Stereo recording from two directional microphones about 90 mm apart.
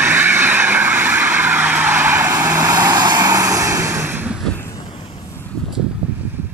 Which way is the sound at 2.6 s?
45° right (ahead or behind).